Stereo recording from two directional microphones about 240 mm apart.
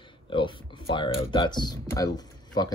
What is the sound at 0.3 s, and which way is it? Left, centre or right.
Speech, left.